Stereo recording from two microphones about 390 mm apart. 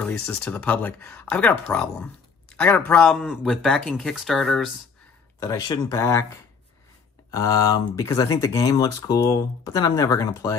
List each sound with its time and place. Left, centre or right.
0.0 s speech: centre